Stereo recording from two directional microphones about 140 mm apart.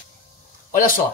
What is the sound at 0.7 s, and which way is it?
Speech, 90° left.